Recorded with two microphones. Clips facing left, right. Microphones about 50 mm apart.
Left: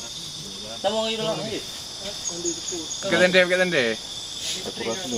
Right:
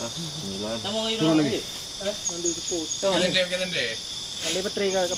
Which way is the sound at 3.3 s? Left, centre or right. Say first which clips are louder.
Left 7 dB; left.